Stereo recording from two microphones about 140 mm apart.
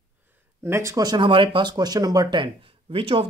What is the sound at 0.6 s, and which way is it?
A man's voice, 20° right (ahead or behind).